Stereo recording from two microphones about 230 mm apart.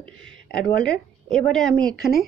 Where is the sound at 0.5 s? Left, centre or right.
Centre.